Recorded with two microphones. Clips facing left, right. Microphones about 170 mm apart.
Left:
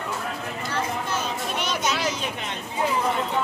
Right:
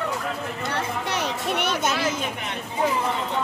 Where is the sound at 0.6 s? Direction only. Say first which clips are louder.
Even; 70° right (ahead or behind).